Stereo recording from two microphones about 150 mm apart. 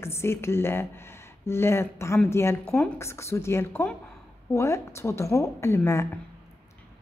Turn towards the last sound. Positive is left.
turn(degrees=20)  # may be behind; listen again after turning